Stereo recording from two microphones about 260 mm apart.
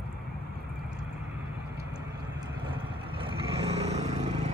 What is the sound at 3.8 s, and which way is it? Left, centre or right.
Vehicle, right.